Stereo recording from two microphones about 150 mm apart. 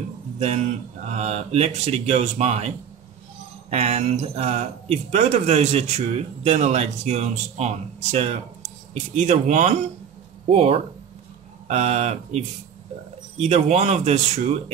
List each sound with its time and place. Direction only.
0.4 s speech: 50° right (ahead or behind)
3.7 s speech: 45° right (ahead or behind)